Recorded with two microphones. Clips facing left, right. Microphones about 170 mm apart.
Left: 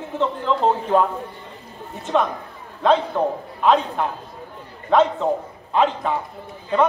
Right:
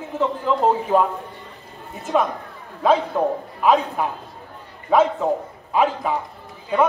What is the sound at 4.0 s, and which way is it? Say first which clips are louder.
A man's voice: even; 5° right (ahead or behind).